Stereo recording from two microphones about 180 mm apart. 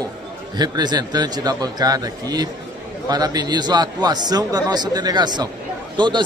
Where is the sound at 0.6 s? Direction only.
20° right (ahead or behind).